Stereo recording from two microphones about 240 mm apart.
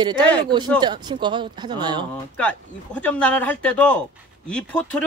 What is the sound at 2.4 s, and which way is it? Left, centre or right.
Speech, centre.